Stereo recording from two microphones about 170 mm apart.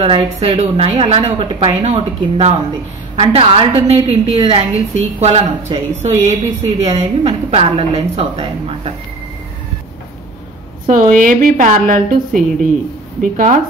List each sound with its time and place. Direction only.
0.0 s a woman's voice: 30° right (ahead or behind)
10.9 s a woman's voice: 50° right (ahead or behind)
12.3 s a woman's voice: centre (ahead or behind)
13.2 s a woman's voice: 50° right (ahead or behind)